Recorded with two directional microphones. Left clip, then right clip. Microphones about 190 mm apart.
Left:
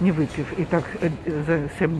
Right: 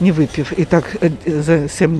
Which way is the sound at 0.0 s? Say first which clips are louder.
Right 7 dB; 45° right (ahead or behind).